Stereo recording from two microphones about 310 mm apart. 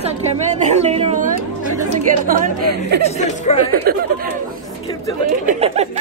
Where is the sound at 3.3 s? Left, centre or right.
Left.